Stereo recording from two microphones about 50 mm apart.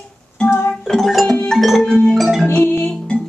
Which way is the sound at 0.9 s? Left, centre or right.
Centre.